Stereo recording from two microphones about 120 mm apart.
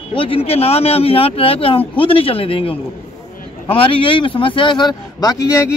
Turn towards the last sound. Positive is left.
turn(degrees=30)  # may be behind; listen again after turning